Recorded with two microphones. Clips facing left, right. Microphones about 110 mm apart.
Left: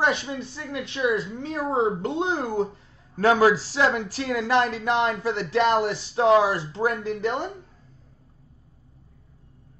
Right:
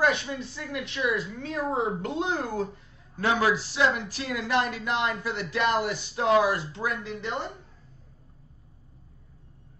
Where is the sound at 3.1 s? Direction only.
40° left (ahead or behind).